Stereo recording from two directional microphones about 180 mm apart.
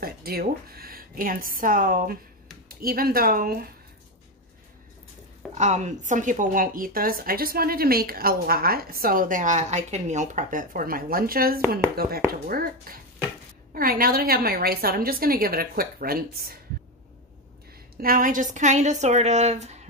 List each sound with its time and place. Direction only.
0.0 s a woman's voice: 55° right (ahead or behind)
5.5 s a woman's voice: 40° right (ahead or behind); by 16.5 s 55° right (ahead or behind)
18.0 s a woman's voice: 50° right (ahead or behind)